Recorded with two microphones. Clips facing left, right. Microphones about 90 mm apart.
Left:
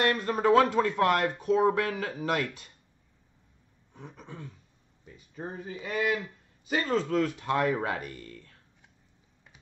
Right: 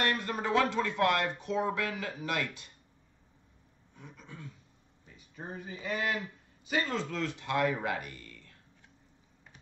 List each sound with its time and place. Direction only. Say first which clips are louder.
0.2 s speech: left 7 dB; 40° left (ahead or behind)
3.9 s a sound: left 5 dB; 40° left (ahead or behind)
5.1 s speech: left 4 dB; 35° left (ahead or behind)
5.9 s speech: left 4 dB; 30° right (ahead or behind)
6.6 s speech: left 4 dB; 35° left (ahead or behind)